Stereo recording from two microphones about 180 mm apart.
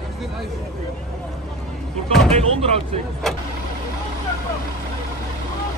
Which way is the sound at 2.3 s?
35° right (ahead or behind).